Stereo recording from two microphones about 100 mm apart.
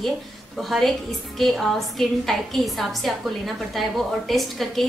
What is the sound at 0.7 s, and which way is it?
A woman's voice, centre (ahead or behind).